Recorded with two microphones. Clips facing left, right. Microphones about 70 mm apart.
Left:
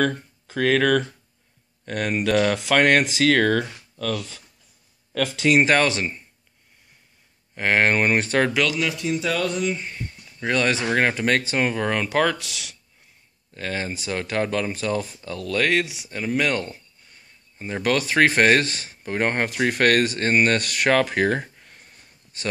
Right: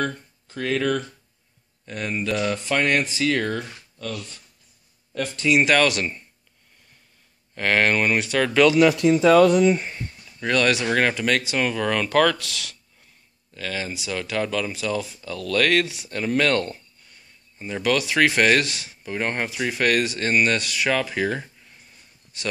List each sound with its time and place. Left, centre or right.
0.0 s speech: left
1.9 s speech: left
5.1 s speech: left
5.6 s speech: left
7.5 s speech: left
8.7 s speech: right
10.4 s speech: left
11.1 s speech: left
13.6 s speech: left
17.8 s speech: left
22.3 s speech: left